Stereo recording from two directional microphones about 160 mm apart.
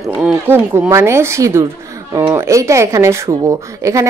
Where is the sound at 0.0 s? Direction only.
5° right (ahead or behind).